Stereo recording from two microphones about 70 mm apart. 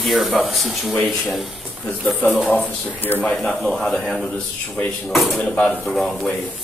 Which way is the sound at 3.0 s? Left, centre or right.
Left.